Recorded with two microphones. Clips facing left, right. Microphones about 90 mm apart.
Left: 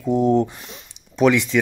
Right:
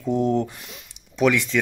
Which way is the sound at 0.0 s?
20° left (ahead or behind).